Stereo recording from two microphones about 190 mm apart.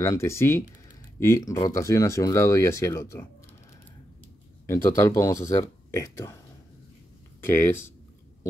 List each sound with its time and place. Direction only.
0.0 s speech: 15° left (ahead or behind)
4.9 s speech: 15° left (ahead or behind)
7.4 s speech: 10° left (ahead or behind)